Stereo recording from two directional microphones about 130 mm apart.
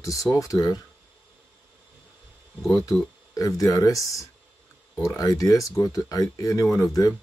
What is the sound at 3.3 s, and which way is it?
Speech, 25° left (ahead or behind).